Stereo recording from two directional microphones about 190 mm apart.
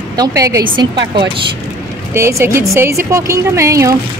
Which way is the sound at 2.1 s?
15° right (ahead or behind).